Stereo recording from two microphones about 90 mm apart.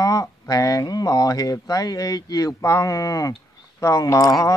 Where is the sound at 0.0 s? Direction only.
40° left (ahead or behind).